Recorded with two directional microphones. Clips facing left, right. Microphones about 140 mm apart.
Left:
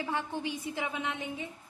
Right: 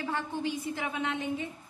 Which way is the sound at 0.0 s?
15° left (ahead or behind).